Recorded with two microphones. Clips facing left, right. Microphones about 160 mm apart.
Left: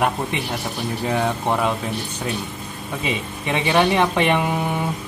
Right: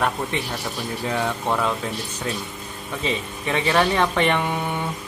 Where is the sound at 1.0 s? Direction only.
15° left (ahead or behind).